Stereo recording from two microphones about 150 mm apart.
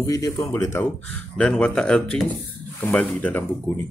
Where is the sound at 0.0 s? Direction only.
25° left (ahead or behind).